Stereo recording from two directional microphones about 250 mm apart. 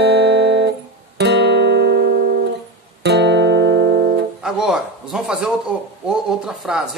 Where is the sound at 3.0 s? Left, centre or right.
Right.